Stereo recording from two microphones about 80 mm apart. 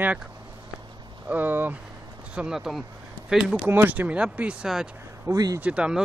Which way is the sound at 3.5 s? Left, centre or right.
Right.